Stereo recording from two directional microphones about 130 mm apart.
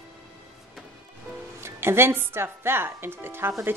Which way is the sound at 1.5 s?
20° right (ahead or behind).